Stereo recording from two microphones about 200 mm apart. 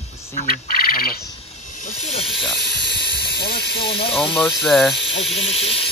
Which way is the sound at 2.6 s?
60° left (ahead or behind).